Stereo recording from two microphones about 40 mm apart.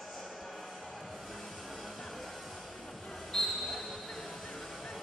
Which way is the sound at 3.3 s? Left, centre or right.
Centre.